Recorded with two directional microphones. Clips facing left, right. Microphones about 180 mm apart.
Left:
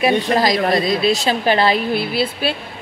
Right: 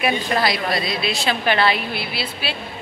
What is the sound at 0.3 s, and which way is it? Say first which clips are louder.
Speech: left 5 dB; 40° left (ahead or behind).